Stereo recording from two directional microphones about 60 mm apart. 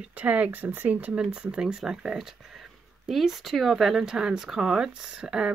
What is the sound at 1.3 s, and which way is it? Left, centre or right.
Speech, centre.